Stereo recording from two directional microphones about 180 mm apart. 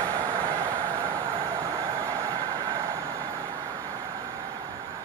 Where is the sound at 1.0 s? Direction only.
20° right (ahead or behind).